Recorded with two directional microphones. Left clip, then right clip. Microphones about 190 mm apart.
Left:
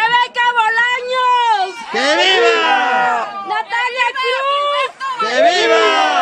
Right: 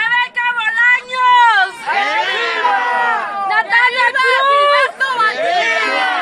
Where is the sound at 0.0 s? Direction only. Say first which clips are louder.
Left 2 dB; 60° left (ahead or behind).